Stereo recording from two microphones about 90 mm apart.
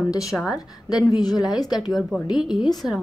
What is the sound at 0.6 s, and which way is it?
A woman's voice, 45° left (ahead or behind).